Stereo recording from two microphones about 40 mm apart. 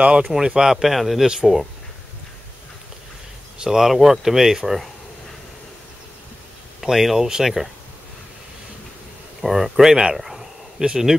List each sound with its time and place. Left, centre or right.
0.0 s speech: right
0.7 s speech: centre
3.5 s speech: centre
6.8 s speech: centre
9.4 s speech: centre
10.1 s a sound: centre